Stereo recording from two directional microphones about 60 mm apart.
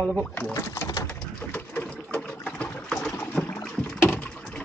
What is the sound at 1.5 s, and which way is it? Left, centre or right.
Bird, left.